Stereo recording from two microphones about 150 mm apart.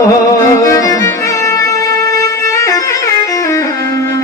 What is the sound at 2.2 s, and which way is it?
Music, 20° left (ahead or behind).